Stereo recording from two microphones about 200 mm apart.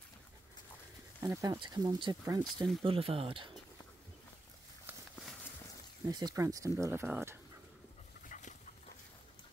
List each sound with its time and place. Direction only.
1.2 s speech: 15° right (ahead or behind)
6.0 s speech: 20° right (ahead or behind)
8.3 s dog: 35° left (ahead or behind)